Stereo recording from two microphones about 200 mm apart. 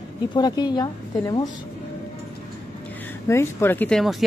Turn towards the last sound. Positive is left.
turn(degrees=5)  # may be behind; listen again after turning